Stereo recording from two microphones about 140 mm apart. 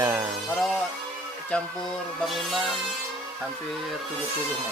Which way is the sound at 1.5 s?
5° left (ahead or behind).